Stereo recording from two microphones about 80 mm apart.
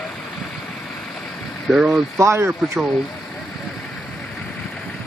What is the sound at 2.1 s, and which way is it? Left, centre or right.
Speech, right.